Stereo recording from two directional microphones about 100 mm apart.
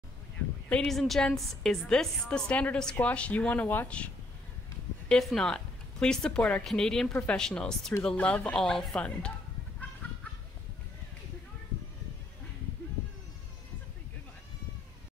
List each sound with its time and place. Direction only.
0.7 s a woman's voice: 5° left (ahead or behind)
7.1 s speech: 20° left (ahead or behind)
7.3 s a woman's voice: 10° left (ahead or behind)